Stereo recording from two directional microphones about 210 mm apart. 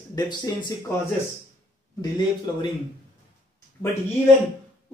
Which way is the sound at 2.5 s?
15° left (ahead or behind).